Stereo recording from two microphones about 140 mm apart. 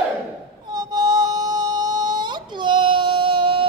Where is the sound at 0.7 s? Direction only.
30° right (ahead or behind).